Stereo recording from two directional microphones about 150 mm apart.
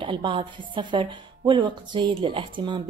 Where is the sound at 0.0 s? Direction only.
35° right (ahead or behind).